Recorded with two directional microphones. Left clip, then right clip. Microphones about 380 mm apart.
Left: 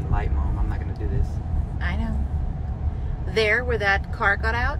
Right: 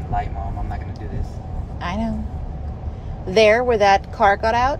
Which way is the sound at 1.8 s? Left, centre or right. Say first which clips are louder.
Right 6 dB; centre.